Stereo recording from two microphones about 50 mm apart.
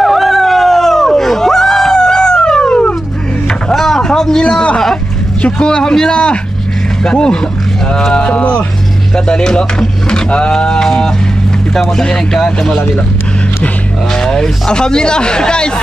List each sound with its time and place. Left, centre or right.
0.0 s dog: centre
3.7 s a sound: centre
5.4 s speech: centre
14.2 s speech: centre